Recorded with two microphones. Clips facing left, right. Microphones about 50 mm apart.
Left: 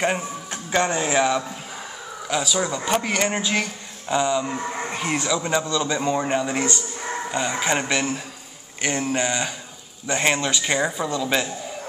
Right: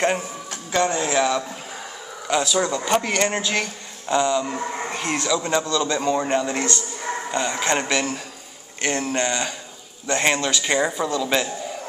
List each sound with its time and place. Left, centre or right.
0.5 s speech: left
2.2 s speech: centre
10.6 s speech: centre